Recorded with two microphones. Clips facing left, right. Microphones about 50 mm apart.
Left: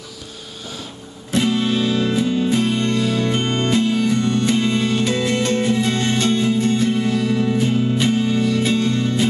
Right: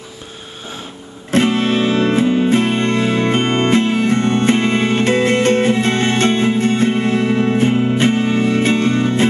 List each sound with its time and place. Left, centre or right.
1.3 s music: right